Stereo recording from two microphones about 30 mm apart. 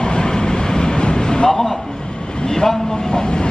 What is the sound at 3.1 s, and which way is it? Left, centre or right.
Vehicle, left.